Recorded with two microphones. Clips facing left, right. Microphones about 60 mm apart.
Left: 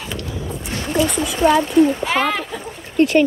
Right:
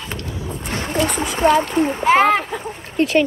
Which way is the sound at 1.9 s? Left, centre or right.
Right.